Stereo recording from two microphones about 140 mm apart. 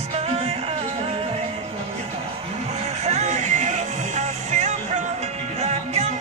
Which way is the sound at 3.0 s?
55° right (ahead or behind).